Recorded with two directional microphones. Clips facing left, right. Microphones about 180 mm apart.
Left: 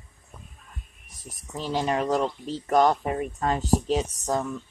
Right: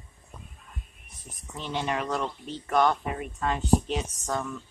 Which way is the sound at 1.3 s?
35° left (ahead or behind).